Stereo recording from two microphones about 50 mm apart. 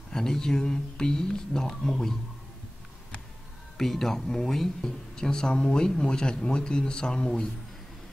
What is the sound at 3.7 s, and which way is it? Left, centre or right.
Speech, centre.